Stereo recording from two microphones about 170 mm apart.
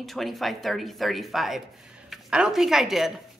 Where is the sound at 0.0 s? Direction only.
Centre (ahead or behind).